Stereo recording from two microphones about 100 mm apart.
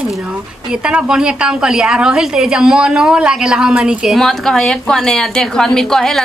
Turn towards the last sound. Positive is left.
turn(degrees=5)  # may be behind; listen again after turning